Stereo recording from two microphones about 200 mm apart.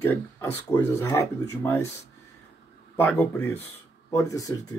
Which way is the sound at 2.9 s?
10° left (ahead or behind).